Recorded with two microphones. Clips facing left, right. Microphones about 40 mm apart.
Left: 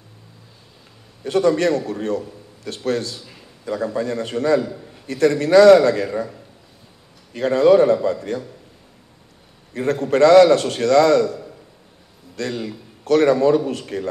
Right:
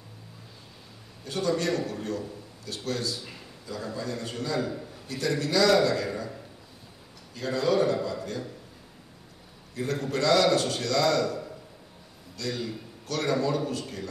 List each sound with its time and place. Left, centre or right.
1.2 s a man's voice: left
7.3 s a man's voice: left
9.8 s a man's voice: left
12.4 s a man's voice: left